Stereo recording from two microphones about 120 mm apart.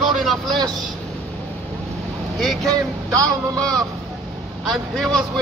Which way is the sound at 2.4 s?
Centre (ahead or behind).